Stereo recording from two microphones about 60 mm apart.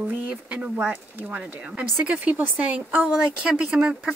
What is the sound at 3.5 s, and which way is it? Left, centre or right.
Speech, centre.